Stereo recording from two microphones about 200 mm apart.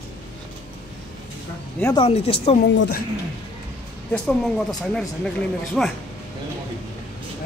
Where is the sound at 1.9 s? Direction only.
30° left (ahead or behind).